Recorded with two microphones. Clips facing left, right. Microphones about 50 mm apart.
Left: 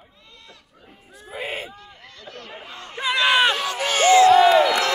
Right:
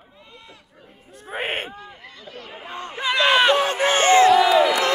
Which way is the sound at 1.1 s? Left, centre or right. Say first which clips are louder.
Right 3 dB; right.